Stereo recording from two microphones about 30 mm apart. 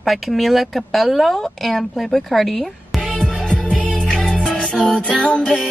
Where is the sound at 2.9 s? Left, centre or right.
Centre.